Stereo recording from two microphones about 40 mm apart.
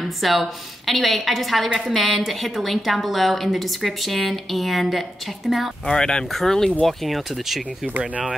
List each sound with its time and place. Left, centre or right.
0.0 s a woman's voice: centre
5.9 s a woman's voice: centre